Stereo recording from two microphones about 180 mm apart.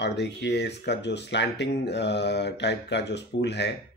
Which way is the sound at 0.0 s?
70° left (ahead or behind).